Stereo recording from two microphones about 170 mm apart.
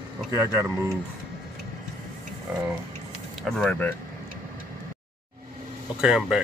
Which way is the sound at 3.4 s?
5° left (ahead or behind).